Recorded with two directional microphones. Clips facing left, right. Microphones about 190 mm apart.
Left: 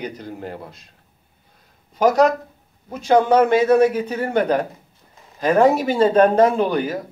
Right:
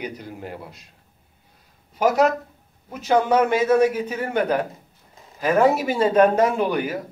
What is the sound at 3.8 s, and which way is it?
Speech, 10° right (ahead or behind).